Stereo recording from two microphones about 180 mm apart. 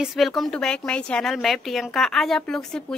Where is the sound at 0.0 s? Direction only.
Centre (ahead or behind).